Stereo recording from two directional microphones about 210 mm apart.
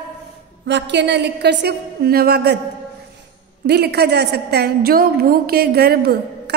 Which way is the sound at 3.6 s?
50° right (ahead or behind).